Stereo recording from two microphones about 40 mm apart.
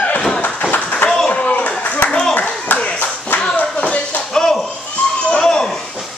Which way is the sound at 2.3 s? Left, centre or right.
Left.